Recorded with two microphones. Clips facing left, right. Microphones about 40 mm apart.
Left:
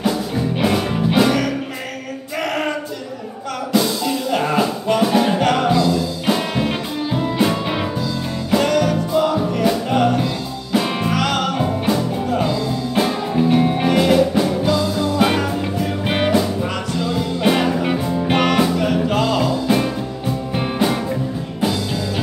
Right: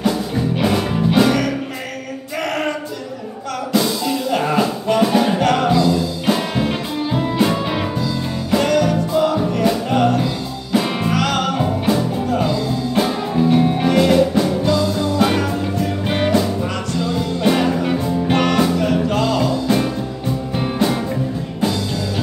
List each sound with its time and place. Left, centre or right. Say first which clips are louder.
0.0 s music: right 1 dB; centre
2.3 s male singing: even; centre
3.7 s music: even; centre